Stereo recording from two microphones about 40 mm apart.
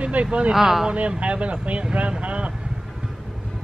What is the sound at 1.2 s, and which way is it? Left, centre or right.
Speech, right.